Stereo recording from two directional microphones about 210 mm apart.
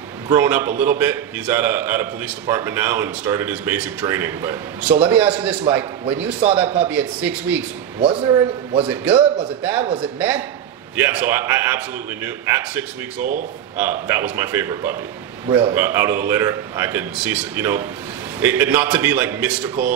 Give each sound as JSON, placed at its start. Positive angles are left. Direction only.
{"t": 0.3, "sound": "a man's voice", "side_deg": -10}
{"t": 8.0, "sound": "a man's voice", "side_deg": -25}
{"t": 8.8, "sound": "a man's voice", "side_deg": -5}
{"t": 13.2, "sound": "a man's voice", "side_deg": -40}
{"t": 13.7, "sound": "a man's voice", "side_deg": -10}